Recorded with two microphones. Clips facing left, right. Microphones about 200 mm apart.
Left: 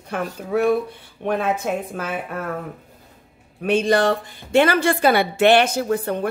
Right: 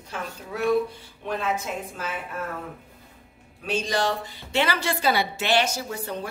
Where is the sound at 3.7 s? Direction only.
60° left (ahead or behind).